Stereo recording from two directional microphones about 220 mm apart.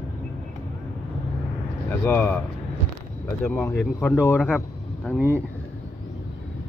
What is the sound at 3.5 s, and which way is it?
A man's voice, 5° left (ahead or behind).